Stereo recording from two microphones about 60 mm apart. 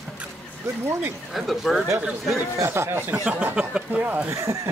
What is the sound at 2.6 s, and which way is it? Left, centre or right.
Speech, right.